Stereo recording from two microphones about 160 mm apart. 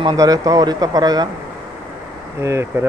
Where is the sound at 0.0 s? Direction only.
20° right (ahead or behind).